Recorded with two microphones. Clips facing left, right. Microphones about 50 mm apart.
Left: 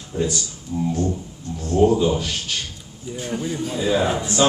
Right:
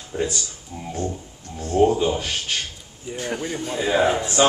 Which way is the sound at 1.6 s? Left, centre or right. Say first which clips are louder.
Left 1 dB; right.